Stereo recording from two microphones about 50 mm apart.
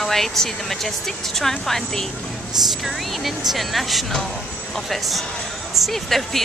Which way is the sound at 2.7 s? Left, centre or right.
Centre.